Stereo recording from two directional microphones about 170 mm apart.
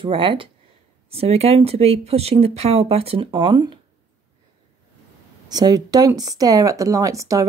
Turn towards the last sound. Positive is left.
turn(degrees=-20)  # may be behind; listen again after turning